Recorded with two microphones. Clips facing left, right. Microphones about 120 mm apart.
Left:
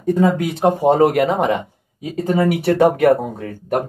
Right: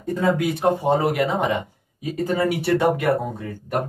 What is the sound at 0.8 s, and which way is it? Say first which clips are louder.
Speech: left 6 dB; 50° left (ahead or behind).